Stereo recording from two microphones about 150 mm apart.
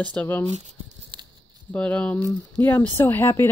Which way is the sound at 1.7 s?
10° left (ahead or behind).